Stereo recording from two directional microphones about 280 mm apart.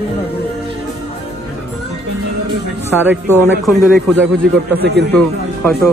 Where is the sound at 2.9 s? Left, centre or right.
Centre.